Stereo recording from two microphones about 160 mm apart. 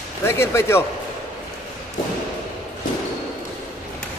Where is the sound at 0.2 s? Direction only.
15° left (ahead or behind).